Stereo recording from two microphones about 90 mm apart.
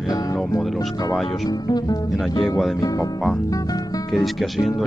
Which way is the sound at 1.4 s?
45° left (ahead or behind).